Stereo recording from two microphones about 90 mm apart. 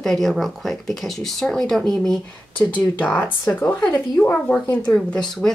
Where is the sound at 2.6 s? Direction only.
15° left (ahead or behind).